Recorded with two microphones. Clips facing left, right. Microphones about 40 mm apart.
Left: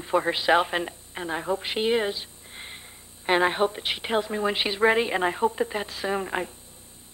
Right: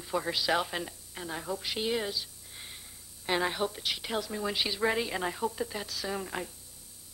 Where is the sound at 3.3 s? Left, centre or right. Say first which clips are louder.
Left 8 dB; left.